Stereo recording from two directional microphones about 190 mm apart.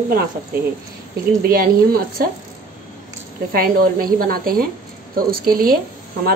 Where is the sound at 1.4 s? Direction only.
50° right (ahead or behind).